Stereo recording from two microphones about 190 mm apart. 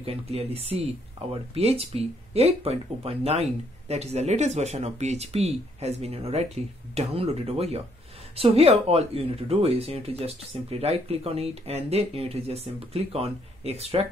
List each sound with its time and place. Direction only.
0.0 s speech: 30° right (ahead or behind)